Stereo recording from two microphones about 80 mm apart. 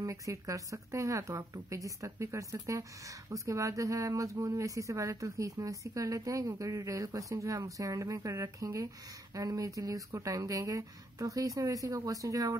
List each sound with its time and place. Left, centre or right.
0.0 s speech: right